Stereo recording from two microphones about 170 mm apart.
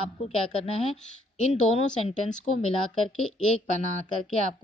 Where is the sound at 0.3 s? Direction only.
35° left (ahead or behind).